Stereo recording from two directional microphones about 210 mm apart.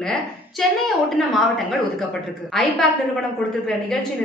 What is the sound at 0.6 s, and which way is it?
Speech, centre (ahead or behind).